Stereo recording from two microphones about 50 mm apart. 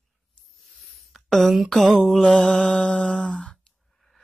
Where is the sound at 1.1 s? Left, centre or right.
Centre.